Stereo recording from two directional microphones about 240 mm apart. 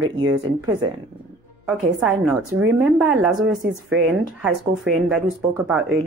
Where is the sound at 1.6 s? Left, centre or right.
Centre.